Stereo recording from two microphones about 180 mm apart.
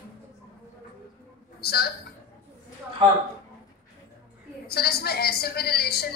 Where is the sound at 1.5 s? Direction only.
60° left (ahead or behind).